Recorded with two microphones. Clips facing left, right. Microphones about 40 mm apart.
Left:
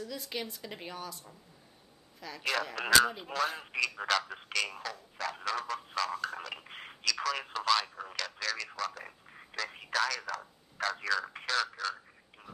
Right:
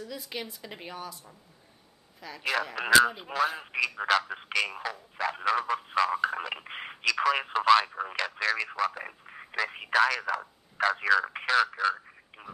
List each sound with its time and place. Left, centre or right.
0.0 s a woman's voice: centre